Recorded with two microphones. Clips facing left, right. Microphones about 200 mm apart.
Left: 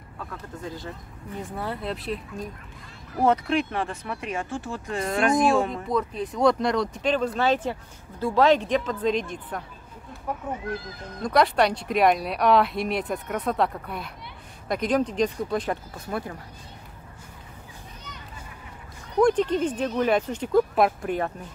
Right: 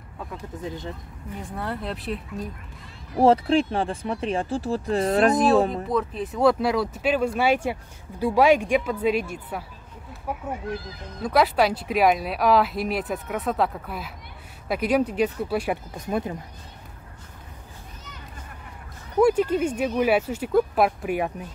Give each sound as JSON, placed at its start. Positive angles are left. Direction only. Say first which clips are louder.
{"t": 0.2, "sound": "speech", "louder": "right 2 dB", "side_deg": -20}
{"t": 1.6, "sound": "speech", "louder": "right 1 dB", "side_deg": 0}
{"t": 3.2, "sound": "speech", "louder": "right 4 dB", "side_deg": -30}
{"t": 5.9, "sound": "speech", "louder": "right 1 dB", "side_deg": 0}
{"t": 19.1, "sound": "speech", "louder": "right 1 dB", "side_deg": -5}